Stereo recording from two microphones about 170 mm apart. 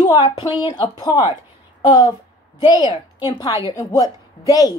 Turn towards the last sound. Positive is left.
turn(degrees=20)  # may be behind; listen again after turning